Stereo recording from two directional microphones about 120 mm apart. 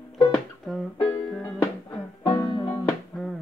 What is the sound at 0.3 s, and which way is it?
Music, centre (ahead or behind).